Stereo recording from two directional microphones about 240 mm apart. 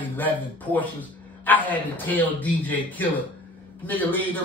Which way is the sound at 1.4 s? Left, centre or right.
Centre.